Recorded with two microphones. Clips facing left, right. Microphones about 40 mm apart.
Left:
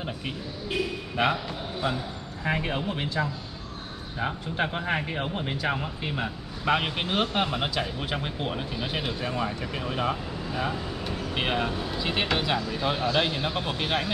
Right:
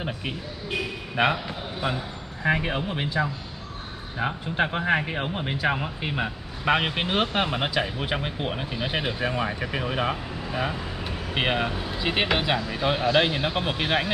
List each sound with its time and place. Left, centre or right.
0.0 s speech: centre